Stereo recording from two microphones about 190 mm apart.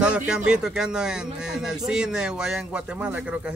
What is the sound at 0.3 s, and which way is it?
Speech, 5° right (ahead or behind).